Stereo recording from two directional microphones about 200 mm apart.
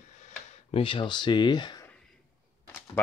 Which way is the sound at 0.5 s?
30° left (ahead or behind).